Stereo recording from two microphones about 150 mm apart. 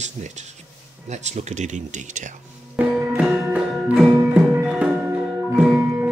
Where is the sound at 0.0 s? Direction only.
50° right (ahead or behind).